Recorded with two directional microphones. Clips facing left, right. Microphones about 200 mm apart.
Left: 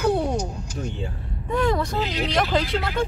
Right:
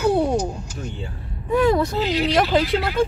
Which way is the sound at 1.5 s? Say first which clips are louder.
Right 5 dB; 5° right (ahead or behind).